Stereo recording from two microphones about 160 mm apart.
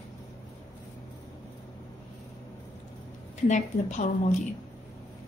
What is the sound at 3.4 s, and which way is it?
Speech, 50° left (ahead or behind).